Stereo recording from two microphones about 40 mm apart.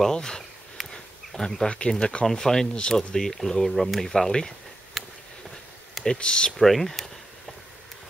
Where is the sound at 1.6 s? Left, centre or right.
Left.